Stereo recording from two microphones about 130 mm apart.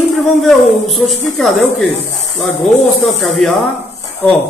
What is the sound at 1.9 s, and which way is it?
Snake, 60° left (ahead or behind).